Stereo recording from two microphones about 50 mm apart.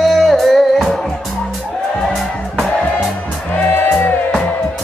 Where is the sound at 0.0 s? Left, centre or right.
Centre.